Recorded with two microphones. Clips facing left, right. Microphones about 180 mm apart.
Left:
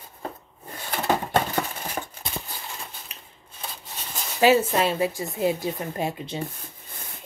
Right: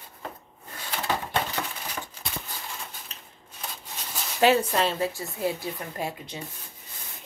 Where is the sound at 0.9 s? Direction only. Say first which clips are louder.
Left 5 dB; 50° left (ahead or behind).